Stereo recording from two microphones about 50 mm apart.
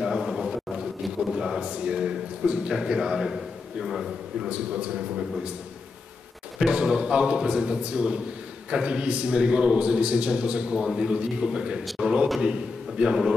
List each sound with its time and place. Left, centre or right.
0.0 s a sound: centre
1.3 s a man's voice: centre
4.5 s a man's voice: right
6.6 s a man's voice: centre